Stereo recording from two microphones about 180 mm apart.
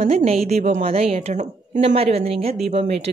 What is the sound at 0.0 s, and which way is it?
A woman's voice, 35° right (ahead or behind).